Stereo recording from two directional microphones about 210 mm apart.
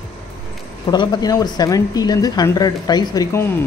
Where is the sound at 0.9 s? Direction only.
20° left (ahead or behind).